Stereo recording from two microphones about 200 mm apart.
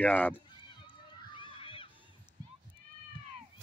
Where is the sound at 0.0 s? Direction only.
5° left (ahead or behind).